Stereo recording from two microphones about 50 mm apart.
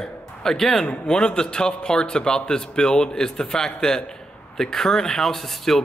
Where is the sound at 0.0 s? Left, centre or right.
Centre.